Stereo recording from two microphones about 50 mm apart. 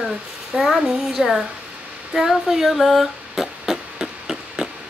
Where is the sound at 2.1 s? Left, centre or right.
Centre.